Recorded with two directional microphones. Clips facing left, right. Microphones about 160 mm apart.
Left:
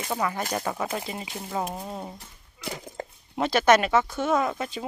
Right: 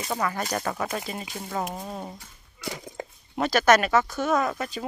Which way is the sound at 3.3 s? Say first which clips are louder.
Even; 25° left (ahead or behind).